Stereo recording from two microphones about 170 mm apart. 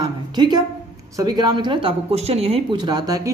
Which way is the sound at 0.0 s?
25° right (ahead or behind).